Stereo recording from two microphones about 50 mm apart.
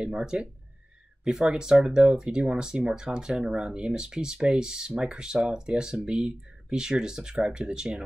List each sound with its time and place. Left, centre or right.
0.0 s speech: centre